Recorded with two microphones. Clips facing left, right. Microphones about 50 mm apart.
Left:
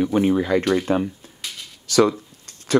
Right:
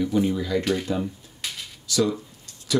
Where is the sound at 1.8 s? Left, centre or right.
Left.